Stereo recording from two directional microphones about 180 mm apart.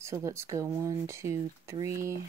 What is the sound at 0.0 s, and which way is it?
Speech, 15° right (ahead or behind).